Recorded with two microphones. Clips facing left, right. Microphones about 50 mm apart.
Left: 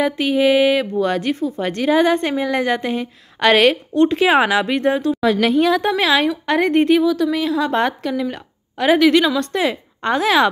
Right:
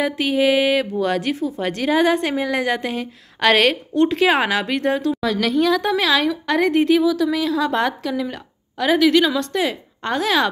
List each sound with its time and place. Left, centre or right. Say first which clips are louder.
0.0 s speech: left 2 dB; centre
5.2 s a woman's voice: left 5 dB; centre